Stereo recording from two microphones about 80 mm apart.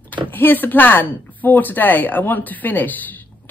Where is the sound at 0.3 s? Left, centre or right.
Left.